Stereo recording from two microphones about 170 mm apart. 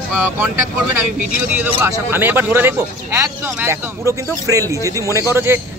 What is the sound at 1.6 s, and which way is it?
A man's voice, 10° right (ahead or behind).